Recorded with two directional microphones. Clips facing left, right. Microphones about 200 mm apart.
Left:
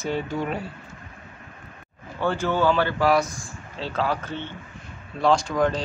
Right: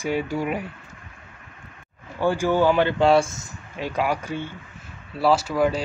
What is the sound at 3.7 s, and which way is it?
Speech, 15° right (ahead or behind).